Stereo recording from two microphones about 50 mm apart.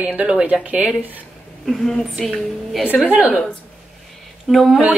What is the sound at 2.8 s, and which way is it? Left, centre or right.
Speech, left.